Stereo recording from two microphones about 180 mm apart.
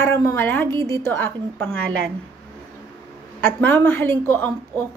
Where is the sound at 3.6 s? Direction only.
10° left (ahead or behind).